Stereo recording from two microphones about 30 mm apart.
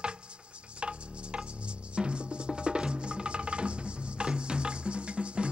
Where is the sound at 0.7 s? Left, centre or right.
Right.